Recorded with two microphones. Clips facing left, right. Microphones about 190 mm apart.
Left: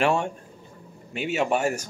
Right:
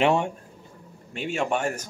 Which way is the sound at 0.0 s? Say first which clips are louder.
Right 1 dB; 20° right (ahead or behind).